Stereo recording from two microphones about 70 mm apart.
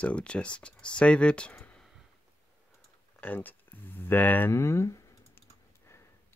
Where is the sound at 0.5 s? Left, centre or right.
Centre.